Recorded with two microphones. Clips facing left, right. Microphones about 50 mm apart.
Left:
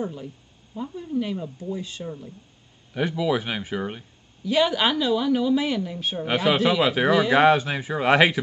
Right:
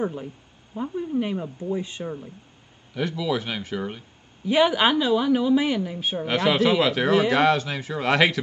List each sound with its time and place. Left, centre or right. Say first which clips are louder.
0.0 s speech: right 3 dB; right
2.9 s speech: left 2 dB; centre
4.5 s a woman's voice: right 2 dB; centre
6.2 s speech: even; centre